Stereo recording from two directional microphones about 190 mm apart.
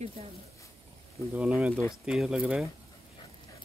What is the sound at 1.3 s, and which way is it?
Speech, 5° right (ahead or behind).